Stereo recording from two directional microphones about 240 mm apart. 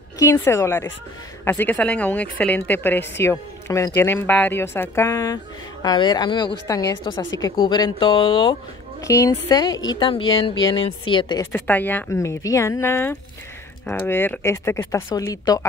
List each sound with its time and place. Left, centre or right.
0.2 s a woman's voice: centre